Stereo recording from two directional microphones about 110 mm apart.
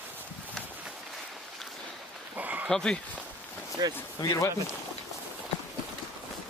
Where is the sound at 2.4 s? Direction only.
15° right (ahead or behind).